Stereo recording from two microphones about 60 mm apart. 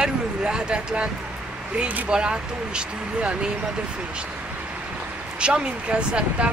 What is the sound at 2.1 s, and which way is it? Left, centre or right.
Speech, centre.